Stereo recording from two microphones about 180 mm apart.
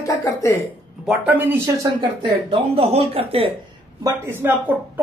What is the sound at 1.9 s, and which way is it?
Speech, 30° right (ahead or behind).